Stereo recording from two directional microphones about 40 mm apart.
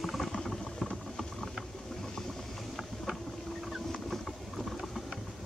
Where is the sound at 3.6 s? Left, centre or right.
Centre.